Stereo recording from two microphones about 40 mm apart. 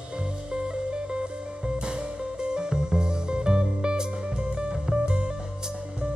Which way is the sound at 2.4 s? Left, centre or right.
Right.